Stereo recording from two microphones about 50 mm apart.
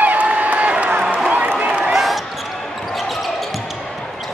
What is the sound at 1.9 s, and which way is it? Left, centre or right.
Basketball bounce, centre.